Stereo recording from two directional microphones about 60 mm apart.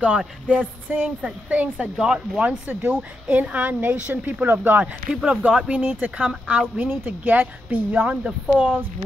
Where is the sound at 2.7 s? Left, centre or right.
Right.